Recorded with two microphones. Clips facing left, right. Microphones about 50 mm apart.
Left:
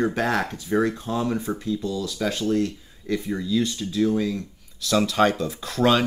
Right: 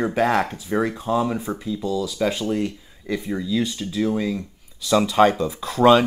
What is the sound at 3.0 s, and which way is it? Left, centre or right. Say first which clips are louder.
Speech: right 1 dB; centre.